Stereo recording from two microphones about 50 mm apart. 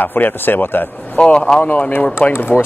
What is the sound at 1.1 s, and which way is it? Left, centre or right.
Speech, centre.